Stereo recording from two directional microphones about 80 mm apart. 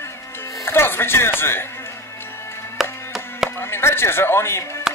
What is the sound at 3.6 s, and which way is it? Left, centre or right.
Speech, left.